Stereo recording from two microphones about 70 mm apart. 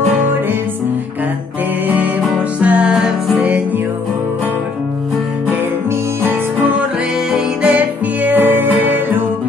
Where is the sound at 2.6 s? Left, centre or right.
Centre.